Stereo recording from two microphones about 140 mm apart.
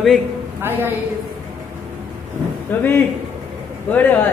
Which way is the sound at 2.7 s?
15° left (ahead or behind).